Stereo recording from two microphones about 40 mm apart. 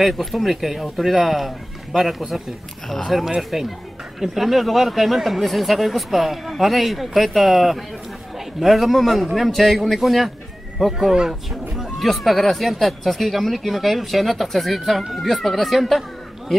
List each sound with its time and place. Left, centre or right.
0.0 s speech: centre
11.7 s a sound: centre
12.1 s speech: centre